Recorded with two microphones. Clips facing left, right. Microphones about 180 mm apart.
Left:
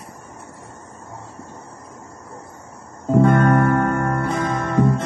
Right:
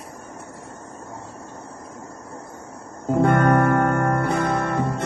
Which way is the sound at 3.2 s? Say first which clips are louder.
Even; 55° right (ahead or behind).